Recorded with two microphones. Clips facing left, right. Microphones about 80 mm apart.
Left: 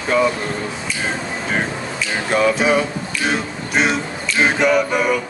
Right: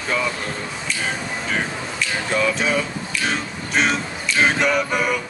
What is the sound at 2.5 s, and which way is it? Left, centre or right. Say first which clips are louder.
Speech: left 5 dB; left.